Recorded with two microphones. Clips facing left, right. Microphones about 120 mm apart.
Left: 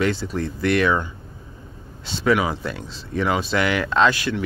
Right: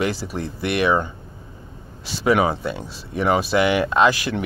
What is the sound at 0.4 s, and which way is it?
Speech, 20° right (ahead or behind).